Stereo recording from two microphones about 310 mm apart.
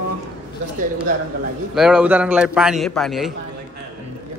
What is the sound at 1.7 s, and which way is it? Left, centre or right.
A man's voice, centre.